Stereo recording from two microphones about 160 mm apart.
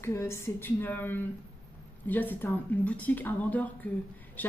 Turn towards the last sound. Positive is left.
turn(degrees=10)  # may be behind; listen again after turning